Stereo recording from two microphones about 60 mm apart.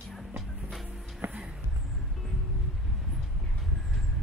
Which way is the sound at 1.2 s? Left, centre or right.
Right.